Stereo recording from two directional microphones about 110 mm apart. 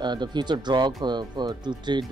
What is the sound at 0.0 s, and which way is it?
Speech, 40° right (ahead or behind).